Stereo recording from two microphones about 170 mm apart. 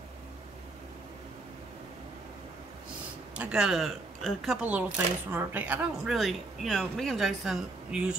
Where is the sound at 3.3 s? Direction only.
5° right (ahead or behind).